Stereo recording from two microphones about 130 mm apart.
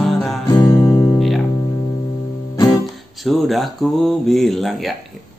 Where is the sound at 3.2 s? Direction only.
Centre (ahead or behind).